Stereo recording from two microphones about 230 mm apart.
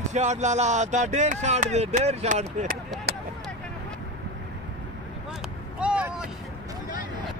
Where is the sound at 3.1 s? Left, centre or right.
Right.